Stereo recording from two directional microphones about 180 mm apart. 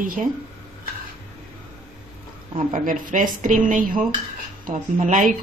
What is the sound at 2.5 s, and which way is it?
A woman's voice, 45° right (ahead or behind).